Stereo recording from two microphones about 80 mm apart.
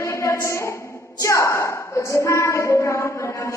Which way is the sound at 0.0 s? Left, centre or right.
Left.